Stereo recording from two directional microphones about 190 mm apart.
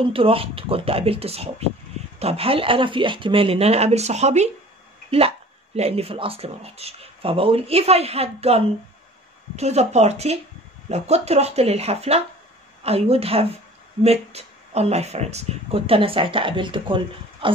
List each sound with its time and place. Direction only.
0.0 s speech: 30° right (ahead or behind)
5.8 s speech: 30° right (ahead or behind)